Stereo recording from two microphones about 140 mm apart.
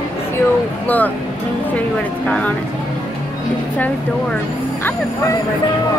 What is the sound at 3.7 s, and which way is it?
Speech, 10° left (ahead or behind).